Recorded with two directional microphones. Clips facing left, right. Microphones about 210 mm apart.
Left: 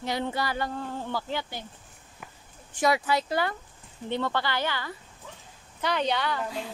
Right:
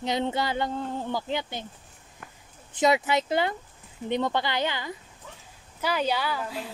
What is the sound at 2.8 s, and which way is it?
A woman's voice, 20° right (ahead or behind).